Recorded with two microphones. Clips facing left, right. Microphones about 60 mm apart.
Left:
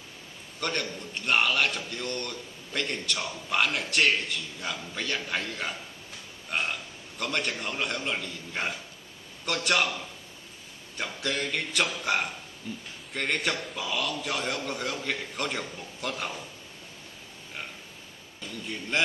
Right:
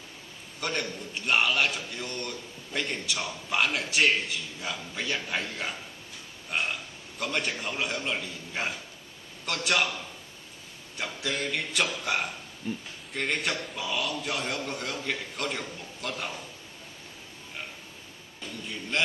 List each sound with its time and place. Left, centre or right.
0.6 s a man's voice: centre
7.2 s a man's voice: centre
11.0 s a man's voice: centre
12.6 s speech: right
13.1 s a man's voice: centre
18.7 s a man's voice: centre